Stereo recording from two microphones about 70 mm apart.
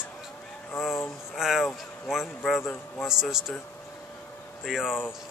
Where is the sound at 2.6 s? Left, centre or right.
Left.